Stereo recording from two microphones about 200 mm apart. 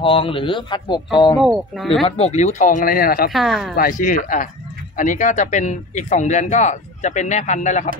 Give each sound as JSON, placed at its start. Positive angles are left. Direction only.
{"t": 0.0, "sound": "speech", "side_deg": 25}
{"t": 1.4, "sound": "speech", "side_deg": 0}
{"t": 2.0, "sound": "speech", "side_deg": 30}
{"t": 3.3, "sound": "speech", "side_deg": 0}
{"t": 3.7, "sound": "speech", "side_deg": 45}